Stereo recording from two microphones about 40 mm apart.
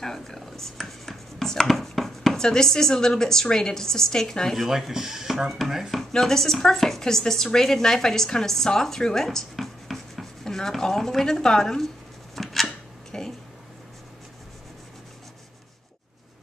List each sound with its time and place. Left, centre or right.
0.0 s speech: centre
2.3 s a woman's voice: centre
4.6 s speech: centre
5.9 s a woman's voice: centre
9.8 s rub: centre
10.4 s a sound: centre
10.8 s a woman's voice: centre
12.6 s a sound: centre